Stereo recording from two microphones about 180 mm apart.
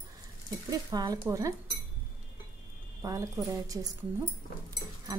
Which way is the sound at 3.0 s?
20° right (ahead or behind).